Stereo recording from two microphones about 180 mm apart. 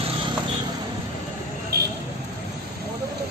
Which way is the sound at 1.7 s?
55° right (ahead or behind).